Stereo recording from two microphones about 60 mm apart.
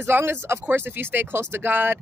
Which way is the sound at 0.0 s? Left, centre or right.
Right.